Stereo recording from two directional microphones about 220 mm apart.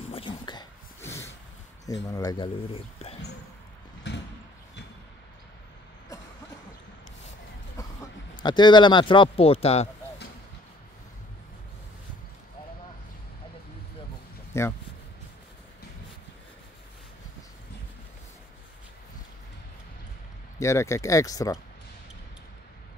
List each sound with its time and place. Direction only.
0.1 s a sound: 25° left (ahead or behind)
1.9 s speech: 15° left (ahead or behind)
4.1 s a sound: 50° left (ahead or behind)
8.4 s speech: 20° left (ahead or behind)
14.5 s speech: 10° left (ahead or behind)
20.5 s speech: 15° left (ahead or behind)